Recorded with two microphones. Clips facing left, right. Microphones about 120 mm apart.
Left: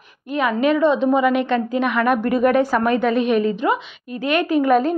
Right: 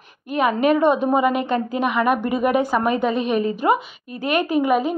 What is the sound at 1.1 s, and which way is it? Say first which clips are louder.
Speech: left 2 dB; 40° right (ahead or behind).